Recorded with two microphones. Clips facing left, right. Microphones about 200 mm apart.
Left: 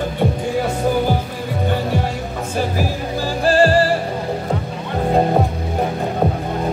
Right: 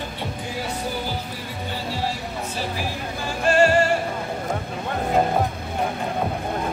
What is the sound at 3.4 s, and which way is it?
Music, 35° left (ahead or behind).